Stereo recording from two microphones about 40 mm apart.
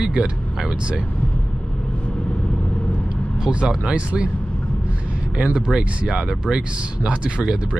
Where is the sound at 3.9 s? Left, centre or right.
Right.